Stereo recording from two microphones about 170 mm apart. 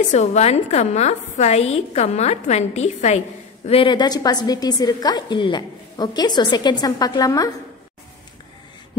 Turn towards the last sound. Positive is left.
turn(degrees=20)  # may be behind; listen again after turning